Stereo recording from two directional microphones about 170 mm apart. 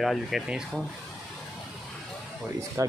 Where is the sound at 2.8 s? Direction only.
15° right (ahead or behind).